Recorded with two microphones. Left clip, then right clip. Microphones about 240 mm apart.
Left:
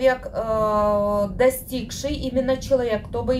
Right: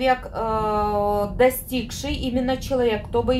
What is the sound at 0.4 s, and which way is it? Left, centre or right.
Speech, right.